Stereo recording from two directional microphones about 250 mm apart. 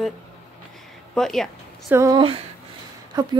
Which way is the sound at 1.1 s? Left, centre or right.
Centre.